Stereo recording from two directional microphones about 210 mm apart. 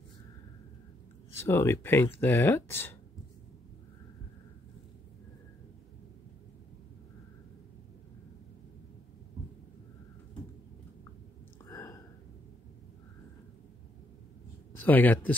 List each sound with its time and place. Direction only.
1.4 s speech: 10° left (ahead or behind)
11.7 s a sound: 15° left (ahead or behind)
14.8 s speech: 10° left (ahead or behind)